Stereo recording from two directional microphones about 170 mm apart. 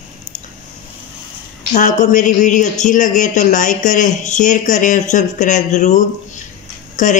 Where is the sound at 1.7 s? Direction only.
45° left (ahead or behind).